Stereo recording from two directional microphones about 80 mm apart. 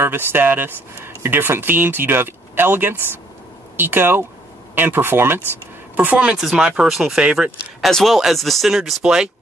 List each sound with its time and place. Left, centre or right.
0.0 s speech: right
5.9 s speech: centre
6.4 s speech: centre
7.9 s speech: centre